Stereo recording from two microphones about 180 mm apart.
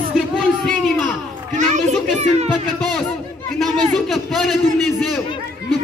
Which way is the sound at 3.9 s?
Centre (ahead or behind).